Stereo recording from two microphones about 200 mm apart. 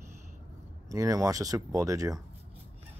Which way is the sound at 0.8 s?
15° right (ahead or behind).